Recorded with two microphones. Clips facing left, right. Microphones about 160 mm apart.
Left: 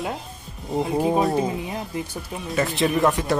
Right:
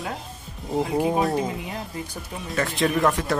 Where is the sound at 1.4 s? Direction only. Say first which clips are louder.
Left 3 dB; 25° left (ahead or behind).